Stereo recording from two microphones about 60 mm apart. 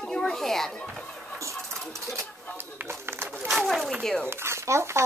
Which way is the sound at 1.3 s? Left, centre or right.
Right.